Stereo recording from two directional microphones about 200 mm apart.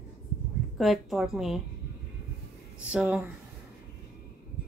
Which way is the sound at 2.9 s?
5° right (ahead or behind).